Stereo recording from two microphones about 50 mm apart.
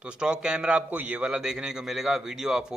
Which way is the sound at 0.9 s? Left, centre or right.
Right.